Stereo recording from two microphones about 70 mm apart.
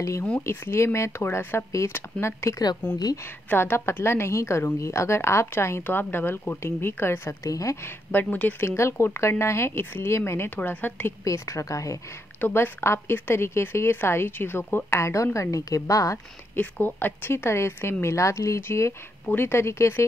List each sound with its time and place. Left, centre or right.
0.4 s a woman's voice: left
7.8 s speech: left
8.6 s a woman's voice: left
11.2 s speech: left
12.4 s a woman's voice: left
16.8 s a woman's voice: left